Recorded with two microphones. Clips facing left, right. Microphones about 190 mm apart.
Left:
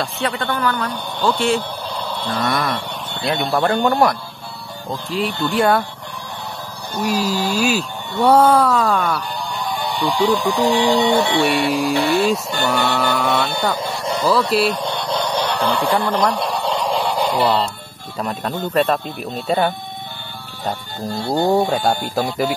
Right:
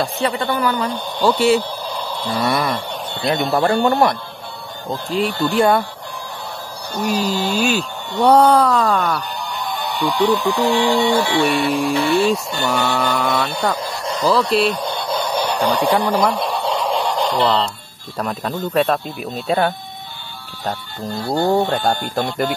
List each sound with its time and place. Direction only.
0.0 s a man's voice: centre (ahead or behind)
5.4 s a man's voice: centre (ahead or behind)
7.0 s a man's voice: centre (ahead or behind)
9.8 s speech: 10° left (ahead or behind)
11.4 s a man's voice: centre (ahead or behind)
16.3 s a sound: centre (ahead or behind)
18.1 s a man's voice: centre (ahead or behind)
21.5 s a man's voice: 10° left (ahead or behind)